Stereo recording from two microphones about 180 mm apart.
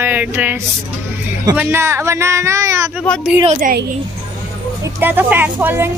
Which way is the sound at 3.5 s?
55° right (ahead or behind).